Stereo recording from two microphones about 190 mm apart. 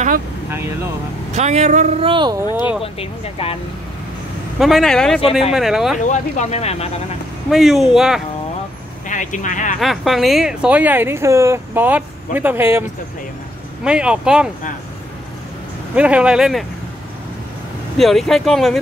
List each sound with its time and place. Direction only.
0.5 s speech: 10° right (ahead or behind)
1.3 s speech: 35° right (ahead or behind)
2.8 s speech: 30° left (ahead or behind)
4.6 s speech: centre (ahead or behind)
6.0 s speech: 40° left (ahead or behind)
7.5 s speech: centre (ahead or behind)
9.1 s speech: 40° left (ahead or behind)
9.8 s speech: centre (ahead or behind)
13.8 s speech: 5° right (ahead or behind)
15.9 s speech: 5° right (ahead or behind)
17.9 s speech: centre (ahead or behind)